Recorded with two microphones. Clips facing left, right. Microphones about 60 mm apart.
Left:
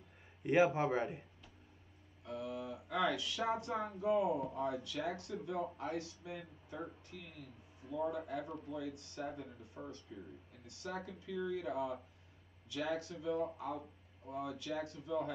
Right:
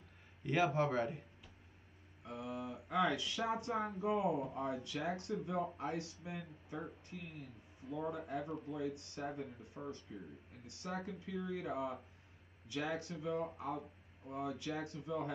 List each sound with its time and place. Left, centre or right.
0.4 s a man's voice: left
2.2 s speech: right
9.8 s speech: centre
10.8 s speech: right